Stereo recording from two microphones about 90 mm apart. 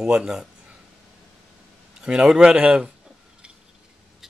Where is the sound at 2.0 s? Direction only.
5° right (ahead or behind).